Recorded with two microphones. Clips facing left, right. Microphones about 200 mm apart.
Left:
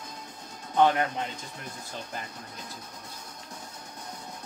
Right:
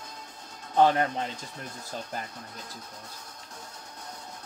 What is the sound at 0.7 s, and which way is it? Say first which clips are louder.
Speech: right 1 dB; 35° right (ahead or behind).